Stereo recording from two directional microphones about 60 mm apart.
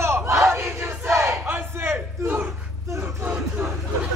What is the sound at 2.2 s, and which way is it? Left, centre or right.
Speech, right.